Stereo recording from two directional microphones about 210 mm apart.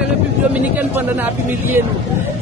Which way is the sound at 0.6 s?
10° right (ahead or behind).